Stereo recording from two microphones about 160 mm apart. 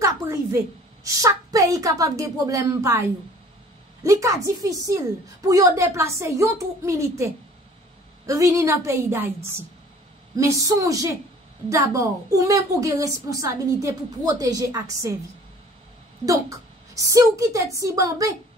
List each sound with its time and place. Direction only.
0.0 s a sound: 20° right (ahead or behind)
1.0 s a woman's voice: 20° right (ahead or behind)
16.3 s a woman's voice: 20° right (ahead or behind)